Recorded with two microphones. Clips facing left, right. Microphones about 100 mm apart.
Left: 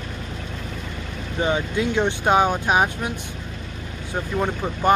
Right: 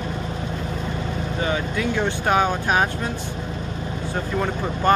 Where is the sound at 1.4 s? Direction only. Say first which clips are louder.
Left 3 dB; 20° left (ahead or behind).